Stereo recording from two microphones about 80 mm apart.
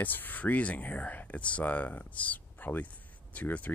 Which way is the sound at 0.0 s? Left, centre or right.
Left.